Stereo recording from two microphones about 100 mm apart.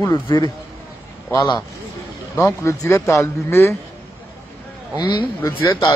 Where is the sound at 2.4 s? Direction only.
30° left (ahead or behind).